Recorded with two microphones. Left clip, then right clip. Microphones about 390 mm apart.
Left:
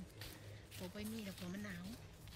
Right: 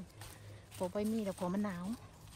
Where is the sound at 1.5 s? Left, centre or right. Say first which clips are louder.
Right 10 dB; centre.